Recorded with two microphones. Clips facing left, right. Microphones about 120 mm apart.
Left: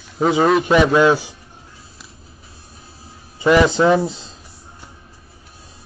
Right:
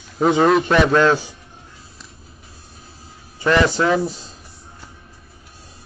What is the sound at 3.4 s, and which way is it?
Speech, 15° left (ahead or behind).